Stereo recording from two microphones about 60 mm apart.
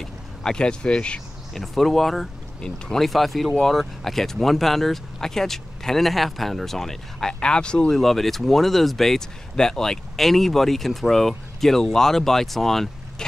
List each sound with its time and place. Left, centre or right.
0.0 s speech: centre
1.5 s speech: centre
7.9 s speech: centre